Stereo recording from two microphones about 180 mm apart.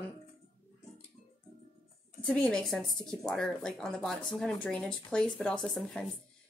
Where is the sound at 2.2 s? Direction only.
5° left (ahead or behind).